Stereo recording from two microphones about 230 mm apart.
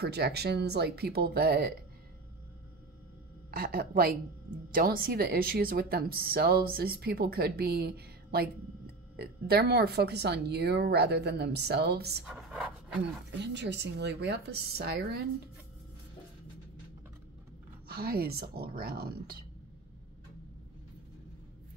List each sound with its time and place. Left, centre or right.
0.0 s speech: right
3.5 s speech: right
12.3 s speech: centre
13.4 s speech: right
17.8 s speech: right